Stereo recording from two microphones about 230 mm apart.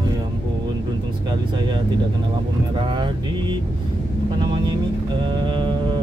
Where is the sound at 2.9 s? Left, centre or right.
Centre.